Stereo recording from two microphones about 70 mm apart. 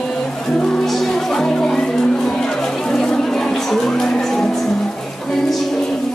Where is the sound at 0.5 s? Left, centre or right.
Centre.